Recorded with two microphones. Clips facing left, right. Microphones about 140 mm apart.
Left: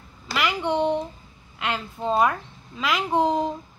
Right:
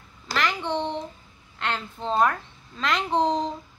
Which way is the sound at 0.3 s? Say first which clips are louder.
Left 2 dB; 10° left (ahead or behind).